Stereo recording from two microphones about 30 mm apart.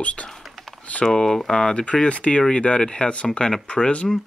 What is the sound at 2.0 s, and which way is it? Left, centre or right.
Speech, left.